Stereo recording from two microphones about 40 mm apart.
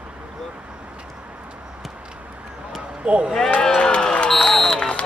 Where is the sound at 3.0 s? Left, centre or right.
Right.